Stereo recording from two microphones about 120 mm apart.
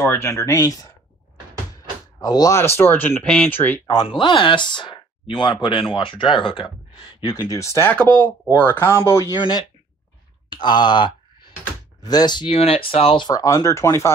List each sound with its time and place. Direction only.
0.0 s speech: 20° left (ahead or behind)
2.1 s speech: 30° left (ahead or behind)
2.6 s speech: 20° left (ahead or behind)
3.8 s speech: 35° left (ahead or behind)
7.2 s speech: 30° left (ahead or behind)
7.9 s speech: 10° left (ahead or behind)
9.4 s speech: 35° left (ahead or behind)
12.5 s speech: 55° left (ahead or behind)
13.3 s speech: 30° left (ahead or behind)